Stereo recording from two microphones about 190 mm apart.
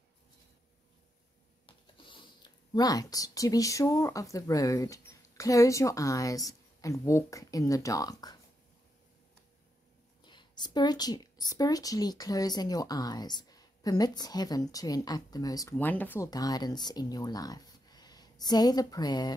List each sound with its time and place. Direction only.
1.7 s speech: 25° left (ahead or behind)
10.2 s speech: 25° left (ahead or behind)
16.3 s speech: 20° left (ahead or behind)